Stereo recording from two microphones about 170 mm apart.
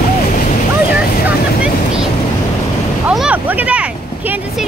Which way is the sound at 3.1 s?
5° right (ahead or behind).